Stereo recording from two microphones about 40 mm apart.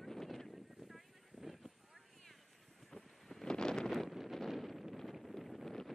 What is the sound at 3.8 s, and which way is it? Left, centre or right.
Wind noise, centre.